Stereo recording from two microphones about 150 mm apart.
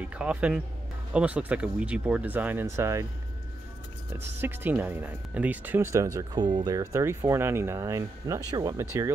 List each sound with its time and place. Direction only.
0.0 s speech: 10° right (ahead or behind)
4.4 s speech: 15° right (ahead or behind)